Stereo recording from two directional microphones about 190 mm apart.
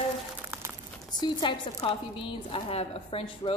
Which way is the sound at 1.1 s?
25° left (ahead or behind).